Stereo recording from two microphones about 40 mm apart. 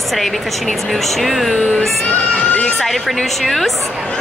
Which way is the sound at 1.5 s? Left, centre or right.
Left.